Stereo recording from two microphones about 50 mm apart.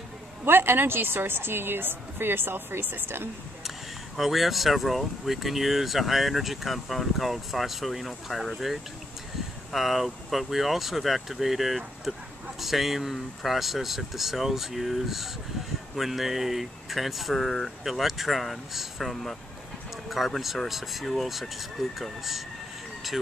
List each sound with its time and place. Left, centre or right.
0.5 s a woman's voice: right
4.2 s speech: centre